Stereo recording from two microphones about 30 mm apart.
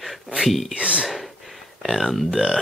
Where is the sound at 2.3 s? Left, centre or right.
Centre.